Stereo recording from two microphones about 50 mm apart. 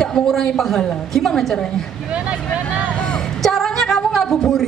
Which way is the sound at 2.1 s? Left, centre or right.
Right.